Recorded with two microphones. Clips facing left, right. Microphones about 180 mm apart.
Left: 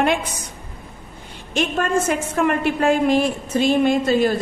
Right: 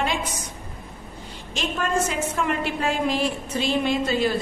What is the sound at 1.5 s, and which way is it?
A woman's voice, 55° left (ahead or behind).